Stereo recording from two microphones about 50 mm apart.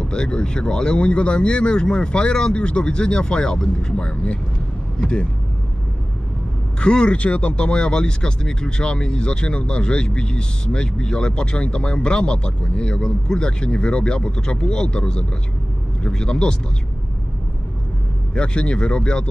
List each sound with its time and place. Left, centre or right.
0.0 s speech: centre
6.8 s speech: centre
18.3 s speech: left